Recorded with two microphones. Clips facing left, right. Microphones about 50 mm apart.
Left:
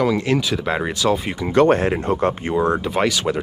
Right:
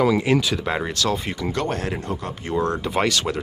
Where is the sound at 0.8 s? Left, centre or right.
Centre.